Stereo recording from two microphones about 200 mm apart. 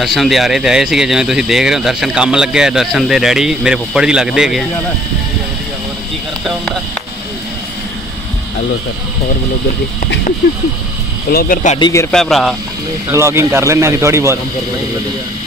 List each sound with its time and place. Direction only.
0.0 s speech: centre (ahead or behind)
11.2 s speech: 45° left (ahead or behind)
11.8 s a man's voice: 15° left (ahead or behind)
12.1 s speech: centre (ahead or behind)
13.1 s speech: 15° right (ahead or behind)